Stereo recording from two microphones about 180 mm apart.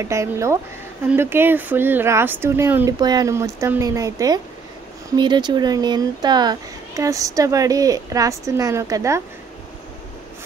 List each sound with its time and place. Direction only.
0.0 s speech: 15° right (ahead or behind)